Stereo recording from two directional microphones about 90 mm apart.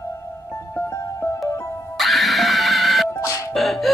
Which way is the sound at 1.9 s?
Centre (ahead or behind).